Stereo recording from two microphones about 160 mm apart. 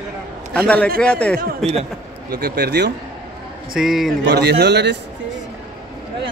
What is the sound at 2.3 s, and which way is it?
Speech, 90° right.